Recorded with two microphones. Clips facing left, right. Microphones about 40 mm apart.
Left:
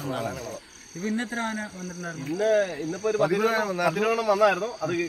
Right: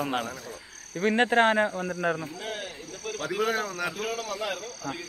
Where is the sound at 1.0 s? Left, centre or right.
Right.